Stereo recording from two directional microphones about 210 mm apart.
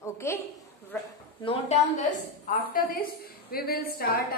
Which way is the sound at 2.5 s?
45° left (ahead or behind).